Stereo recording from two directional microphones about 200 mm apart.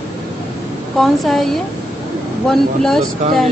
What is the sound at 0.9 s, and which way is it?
Speech, centre (ahead or behind).